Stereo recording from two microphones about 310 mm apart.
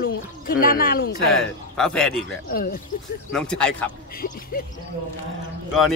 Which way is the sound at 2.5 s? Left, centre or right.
Left.